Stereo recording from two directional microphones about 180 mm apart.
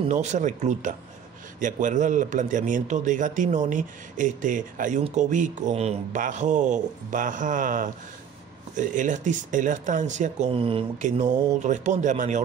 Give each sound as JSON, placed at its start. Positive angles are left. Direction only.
{"t": 0.0, "sound": "a man's voice", "side_deg": -40}
{"t": 11.0, "sound": "a man's voice", "side_deg": -40}